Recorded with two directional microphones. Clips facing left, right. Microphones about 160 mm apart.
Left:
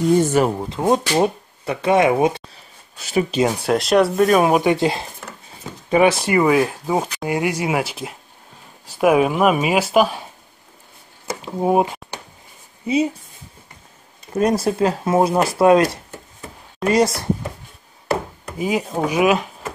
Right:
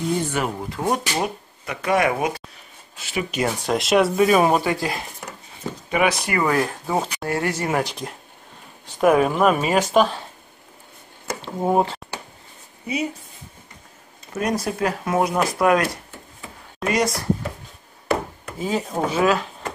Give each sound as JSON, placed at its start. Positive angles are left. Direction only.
{"t": 0.2, "sound": "speech", "side_deg": 40}
{"t": 0.6, "sound": "speech", "side_deg": 20}
{"t": 3.0, "sound": "speech", "side_deg": 40}
{"t": 3.4, "sound": "speech", "side_deg": 10}
{"t": 3.7, "sound": "speech", "side_deg": 0}
{"t": 4.6, "sound": "speech", "side_deg": 20}
{"t": 6.4, "sound": "speech", "side_deg": 5}
{"t": 11.2, "sound": "a sound", "side_deg": 10}
{"t": 12.8, "sound": "speech", "side_deg": 25}
{"t": 14.3, "sound": "speech", "side_deg": 30}
{"t": 16.3, "sound": "a sound", "side_deg": 30}
{"t": 18.6, "sound": "speech", "side_deg": 10}